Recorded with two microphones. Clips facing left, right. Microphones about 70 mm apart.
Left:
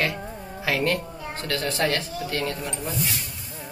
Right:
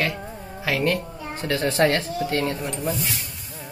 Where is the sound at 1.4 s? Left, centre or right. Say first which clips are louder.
Right 5 dB; right.